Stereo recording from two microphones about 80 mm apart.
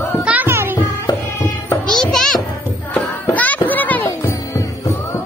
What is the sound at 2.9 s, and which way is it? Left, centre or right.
Music, left.